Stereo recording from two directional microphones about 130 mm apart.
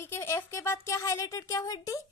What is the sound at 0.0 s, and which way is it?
Speech, 20° left (ahead or behind).